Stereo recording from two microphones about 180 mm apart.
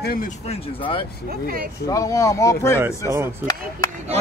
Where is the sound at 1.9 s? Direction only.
20° left (ahead or behind).